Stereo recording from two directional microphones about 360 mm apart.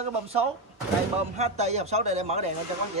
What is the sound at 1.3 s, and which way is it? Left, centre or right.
A man's voice, centre.